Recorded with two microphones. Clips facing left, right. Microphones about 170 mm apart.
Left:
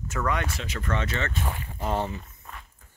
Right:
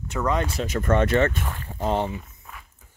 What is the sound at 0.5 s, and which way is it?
Speech, 45° right (ahead or behind).